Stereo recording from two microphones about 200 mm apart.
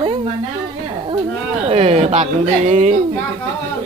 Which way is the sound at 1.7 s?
30° right (ahead or behind).